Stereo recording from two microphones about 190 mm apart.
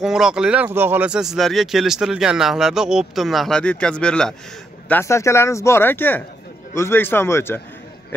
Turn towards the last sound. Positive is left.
turn(degrees=10)  # may be behind; listen again after turning